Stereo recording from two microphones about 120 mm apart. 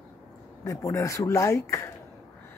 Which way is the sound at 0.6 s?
25° left (ahead or behind).